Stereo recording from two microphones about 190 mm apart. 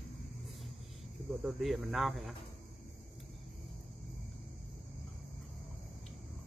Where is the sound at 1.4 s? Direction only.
Centre (ahead or behind).